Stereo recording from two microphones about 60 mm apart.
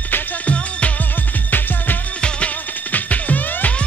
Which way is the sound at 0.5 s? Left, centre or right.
Left.